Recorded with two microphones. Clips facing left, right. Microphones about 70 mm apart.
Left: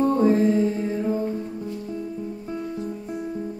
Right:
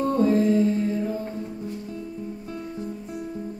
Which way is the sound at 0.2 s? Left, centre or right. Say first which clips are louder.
Right 1 dB; left.